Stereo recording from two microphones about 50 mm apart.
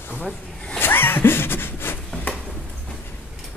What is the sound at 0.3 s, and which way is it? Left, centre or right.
Speech, left.